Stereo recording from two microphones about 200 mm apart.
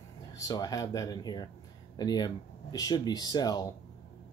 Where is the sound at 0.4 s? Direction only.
20° left (ahead or behind).